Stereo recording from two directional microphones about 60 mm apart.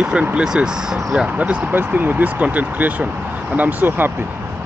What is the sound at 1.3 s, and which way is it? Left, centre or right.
Speech, right.